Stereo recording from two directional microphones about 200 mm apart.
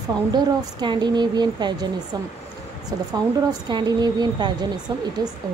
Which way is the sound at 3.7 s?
20° right (ahead or behind).